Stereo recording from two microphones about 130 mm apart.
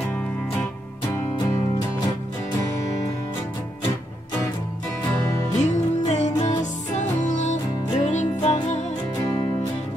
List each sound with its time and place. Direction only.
5.7 s music: 60° left (ahead or behind)